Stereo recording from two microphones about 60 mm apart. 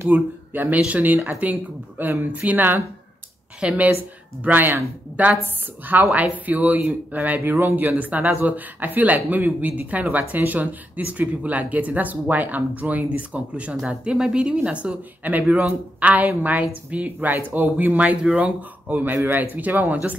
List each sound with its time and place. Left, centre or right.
0.0 s speech: right